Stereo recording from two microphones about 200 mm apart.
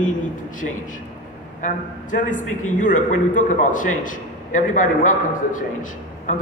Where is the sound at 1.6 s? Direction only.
40° left (ahead or behind).